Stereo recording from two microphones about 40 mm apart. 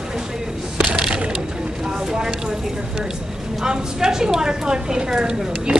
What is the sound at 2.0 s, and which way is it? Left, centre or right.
Speech, centre.